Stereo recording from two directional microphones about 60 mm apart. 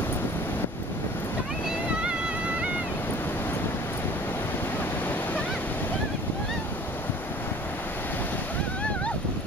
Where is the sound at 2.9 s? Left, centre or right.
Left.